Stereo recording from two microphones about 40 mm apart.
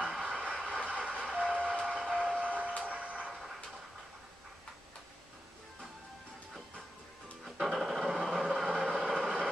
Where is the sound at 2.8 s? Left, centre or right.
Right.